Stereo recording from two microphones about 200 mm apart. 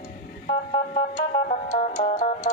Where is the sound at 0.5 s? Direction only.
20° left (ahead or behind).